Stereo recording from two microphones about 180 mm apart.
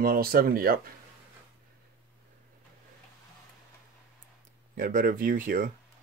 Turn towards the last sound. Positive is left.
turn(degrees=-50)  # may be behind; listen again after turning